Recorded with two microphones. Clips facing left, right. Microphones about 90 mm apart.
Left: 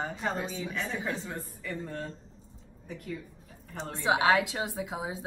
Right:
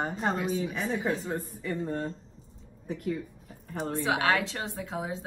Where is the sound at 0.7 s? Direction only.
20° right (ahead or behind).